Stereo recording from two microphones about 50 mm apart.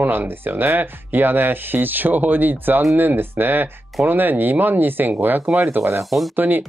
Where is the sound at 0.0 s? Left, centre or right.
Right.